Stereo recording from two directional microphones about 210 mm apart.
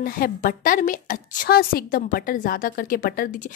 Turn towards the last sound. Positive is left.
turn(degrees=45)  # may be behind; listen again after turning